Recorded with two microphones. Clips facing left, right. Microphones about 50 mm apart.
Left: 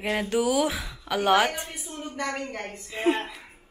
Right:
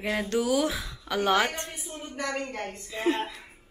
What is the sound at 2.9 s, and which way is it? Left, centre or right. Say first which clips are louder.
Speech: left 3 dB; centre.